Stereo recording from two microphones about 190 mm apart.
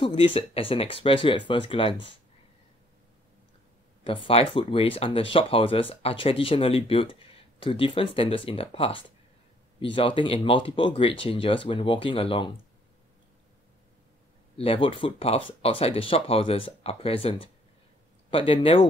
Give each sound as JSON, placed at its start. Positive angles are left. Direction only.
{"t": 0.0, "sound": "speech", "side_deg": 30}
{"t": 4.0, "sound": "speech", "side_deg": 25}
{"t": 14.6, "sound": "speech", "side_deg": 30}